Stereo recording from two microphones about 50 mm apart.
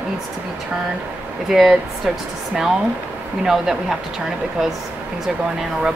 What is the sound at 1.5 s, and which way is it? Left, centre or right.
Speech, centre.